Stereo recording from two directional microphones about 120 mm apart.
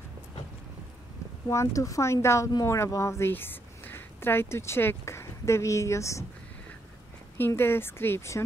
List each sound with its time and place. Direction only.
1.5 s speech: 25° left (ahead or behind)
7.3 s speech: 20° left (ahead or behind)